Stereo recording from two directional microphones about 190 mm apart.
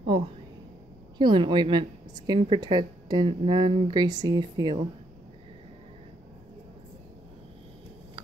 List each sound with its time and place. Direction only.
0.0 s a woman's voice: 25° right (ahead or behind)